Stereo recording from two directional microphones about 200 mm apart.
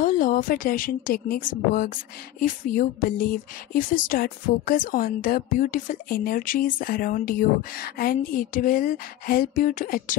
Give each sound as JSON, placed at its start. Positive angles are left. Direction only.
{"t": 0.0, "sound": "a woman's voice", "side_deg": 45}